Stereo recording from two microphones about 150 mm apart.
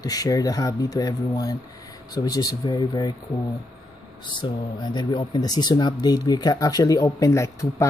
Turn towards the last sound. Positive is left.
turn(degrees=20)  # may be behind; listen again after turning